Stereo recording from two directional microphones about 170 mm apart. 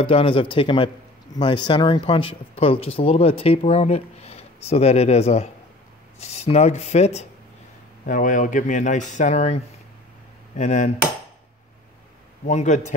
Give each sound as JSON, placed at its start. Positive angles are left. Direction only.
{"t": 0.0, "sound": "speech", "side_deg": 35}
{"t": 10.5, "sound": "dishes", "side_deg": 45}
{"t": 12.4, "sound": "speech", "side_deg": 45}